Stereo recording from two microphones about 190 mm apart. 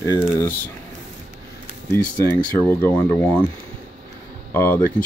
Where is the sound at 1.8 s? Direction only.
10° left (ahead or behind).